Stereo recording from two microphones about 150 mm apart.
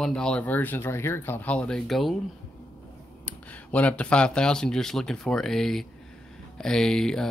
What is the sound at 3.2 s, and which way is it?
Speech, 10° left (ahead or behind).